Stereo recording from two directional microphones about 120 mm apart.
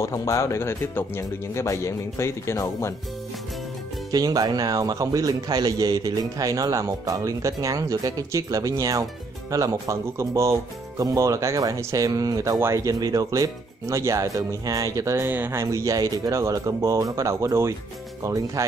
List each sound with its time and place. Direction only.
0.0 s speech: 25° left (ahead or behind)
4.1 s a man's voice: 30° right (ahead or behind)